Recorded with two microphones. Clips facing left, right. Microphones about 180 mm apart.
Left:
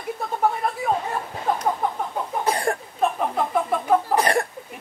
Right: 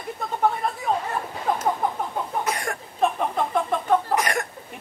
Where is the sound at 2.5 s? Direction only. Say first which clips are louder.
Left 5 dB; 30° left (ahead or behind).